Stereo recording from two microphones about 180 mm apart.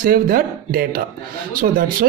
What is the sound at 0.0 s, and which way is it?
Speech, 55° right (ahead or behind).